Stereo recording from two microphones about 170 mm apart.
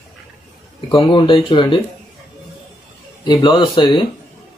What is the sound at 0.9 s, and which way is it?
Speech, 30° left (ahead or behind).